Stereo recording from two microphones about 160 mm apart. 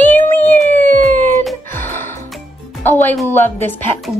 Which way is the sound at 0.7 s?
55° right (ahead or behind).